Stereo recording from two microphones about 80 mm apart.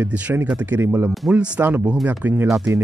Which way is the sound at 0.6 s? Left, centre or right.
Right.